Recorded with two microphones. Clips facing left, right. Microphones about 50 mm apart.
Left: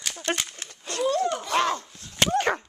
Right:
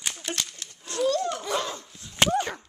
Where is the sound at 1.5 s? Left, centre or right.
Left.